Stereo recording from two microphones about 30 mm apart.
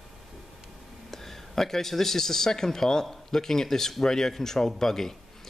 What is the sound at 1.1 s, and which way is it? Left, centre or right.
Speech, centre.